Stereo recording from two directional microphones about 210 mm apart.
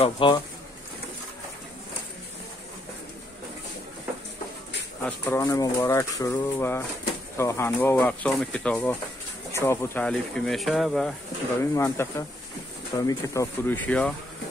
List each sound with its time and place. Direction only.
0.0 s speech: 25° left (ahead or behind)
5.0 s speech: 10° left (ahead or behind)
11.6 s speech: 15° left (ahead or behind)